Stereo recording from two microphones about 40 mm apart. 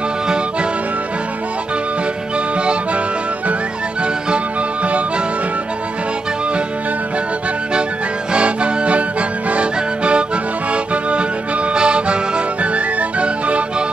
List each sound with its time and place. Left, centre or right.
2.6 s music: right
8.3 s accordion: right
9.5 s music: right
10.7 s accordion: right
11.7 s music: right